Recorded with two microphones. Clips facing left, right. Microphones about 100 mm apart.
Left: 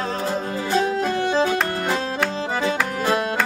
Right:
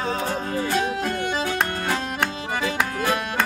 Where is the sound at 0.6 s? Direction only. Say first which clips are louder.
Left 5 dB; 30° left (ahead or behind).